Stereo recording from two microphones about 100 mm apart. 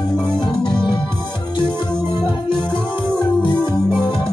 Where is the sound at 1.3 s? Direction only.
45° left (ahead or behind).